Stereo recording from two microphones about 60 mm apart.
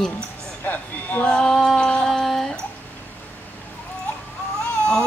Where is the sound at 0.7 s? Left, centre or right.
Left.